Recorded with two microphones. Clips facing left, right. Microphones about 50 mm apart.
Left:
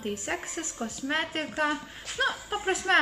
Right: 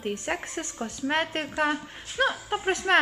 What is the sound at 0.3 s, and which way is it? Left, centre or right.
A woman's voice, right.